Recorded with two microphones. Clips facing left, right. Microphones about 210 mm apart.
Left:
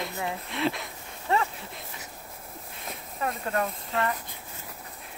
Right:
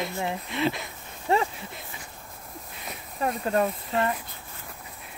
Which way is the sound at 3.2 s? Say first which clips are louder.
Right 4 dB; 30° right (ahead or behind).